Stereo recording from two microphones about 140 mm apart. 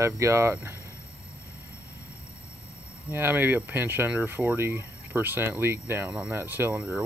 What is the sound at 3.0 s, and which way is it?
Speech, 15° right (ahead or behind).